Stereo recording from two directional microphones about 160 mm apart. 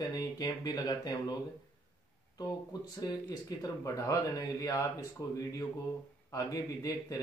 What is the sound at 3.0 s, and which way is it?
Speech, 20° left (ahead or behind).